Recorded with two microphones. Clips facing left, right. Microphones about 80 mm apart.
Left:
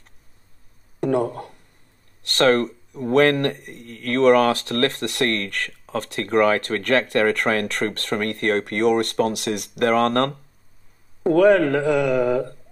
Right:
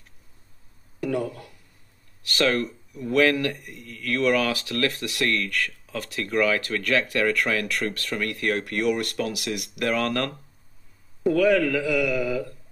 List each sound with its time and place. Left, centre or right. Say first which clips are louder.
1.0 s speech: left 6 dB; left